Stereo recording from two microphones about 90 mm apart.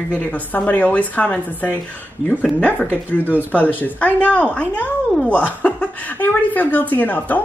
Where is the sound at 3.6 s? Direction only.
20° left (ahead or behind).